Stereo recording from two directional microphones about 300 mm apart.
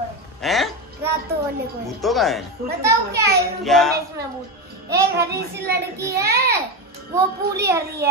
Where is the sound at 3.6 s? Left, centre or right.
Centre.